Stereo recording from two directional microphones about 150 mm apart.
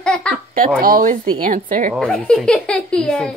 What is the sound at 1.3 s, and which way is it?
Speech, 60° right (ahead or behind).